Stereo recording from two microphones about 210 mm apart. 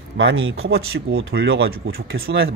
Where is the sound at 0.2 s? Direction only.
60° right (ahead or behind).